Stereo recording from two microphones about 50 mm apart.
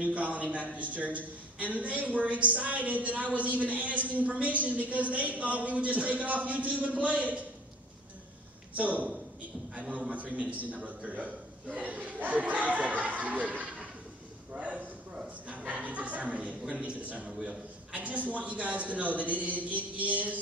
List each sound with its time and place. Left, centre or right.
0.0 s a man's voice: right
8.7 s a man's voice: right